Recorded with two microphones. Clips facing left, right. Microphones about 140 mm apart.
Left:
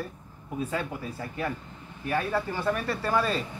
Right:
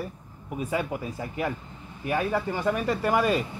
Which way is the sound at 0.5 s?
15° right (ahead or behind).